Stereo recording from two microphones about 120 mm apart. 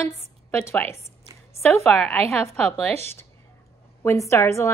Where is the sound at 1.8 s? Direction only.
10° left (ahead or behind).